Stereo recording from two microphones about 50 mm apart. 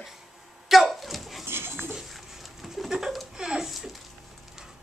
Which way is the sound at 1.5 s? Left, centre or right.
Right.